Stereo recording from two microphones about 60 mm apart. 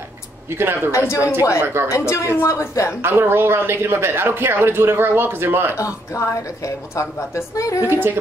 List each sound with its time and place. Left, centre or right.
0.5 s a man's voice: right
0.9 s speech: left
1.6 s a man's voice: right
1.9 s a woman's voice: left
3.0 s a man's voice: right
5.8 s a woman's voice: left
7.9 s a man's voice: right